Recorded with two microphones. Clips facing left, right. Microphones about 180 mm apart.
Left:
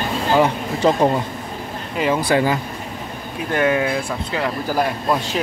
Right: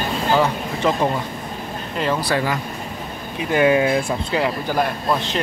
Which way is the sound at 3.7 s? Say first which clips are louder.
Right 4 dB; 25° right (ahead or behind).